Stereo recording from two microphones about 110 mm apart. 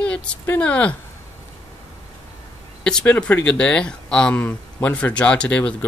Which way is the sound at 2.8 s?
10° left (ahead or behind).